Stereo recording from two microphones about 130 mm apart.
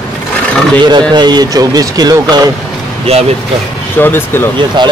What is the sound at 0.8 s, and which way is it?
Speech, 35° right (ahead or behind).